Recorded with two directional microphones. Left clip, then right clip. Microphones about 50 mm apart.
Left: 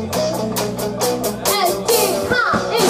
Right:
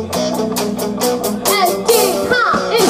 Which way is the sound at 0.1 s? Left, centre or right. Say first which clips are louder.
Right 2 dB; centre.